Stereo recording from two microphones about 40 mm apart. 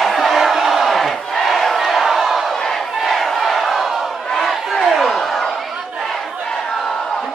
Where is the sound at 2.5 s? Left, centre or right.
Centre.